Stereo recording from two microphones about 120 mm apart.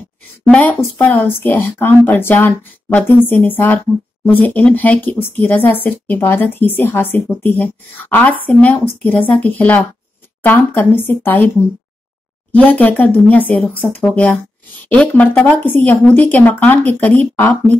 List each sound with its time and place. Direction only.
0.5 s speech: 15° left (ahead or behind)
12.5 s speech: 15° left (ahead or behind)